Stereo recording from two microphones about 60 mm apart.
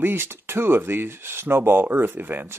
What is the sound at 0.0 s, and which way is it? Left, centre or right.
Speech, right.